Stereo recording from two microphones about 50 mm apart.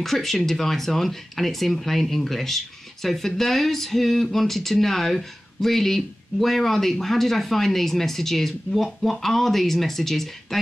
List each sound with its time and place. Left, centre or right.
0.0 s speech: centre